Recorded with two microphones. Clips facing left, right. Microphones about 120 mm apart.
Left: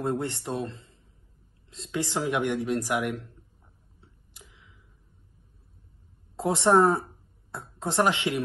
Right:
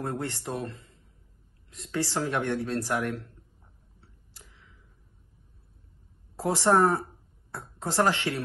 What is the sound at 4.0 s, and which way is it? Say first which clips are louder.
Tick-tock: left 2 dB; 15° left (ahead or behind).